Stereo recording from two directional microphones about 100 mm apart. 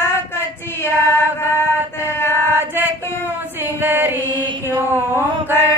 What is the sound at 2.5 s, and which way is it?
Female singing, 20° right (ahead or behind).